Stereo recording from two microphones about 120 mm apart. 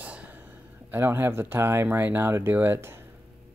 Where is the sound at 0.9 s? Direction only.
15° right (ahead or behind).